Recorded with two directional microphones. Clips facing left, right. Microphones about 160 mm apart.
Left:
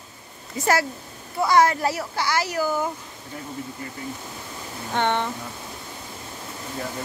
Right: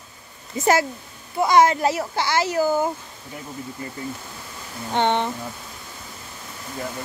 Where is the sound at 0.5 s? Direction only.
20° right (ahead or behind).